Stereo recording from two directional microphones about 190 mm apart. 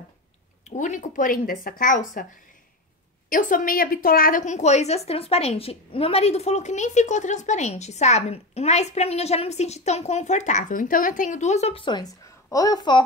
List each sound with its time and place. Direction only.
0.7 s speech: 40° left (ahead or behind)
3.3 s a woman's voice: 45° left (ahead or behind); by 13.0 s 20° left (ahead or behind)